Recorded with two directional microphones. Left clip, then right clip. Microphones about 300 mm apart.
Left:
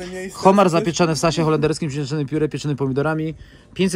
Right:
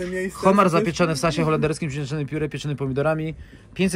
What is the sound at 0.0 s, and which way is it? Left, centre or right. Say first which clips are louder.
Speech: left 4 dB; centre.